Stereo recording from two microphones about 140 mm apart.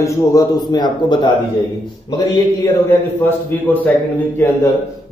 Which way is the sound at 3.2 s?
15° left (ahead or behind).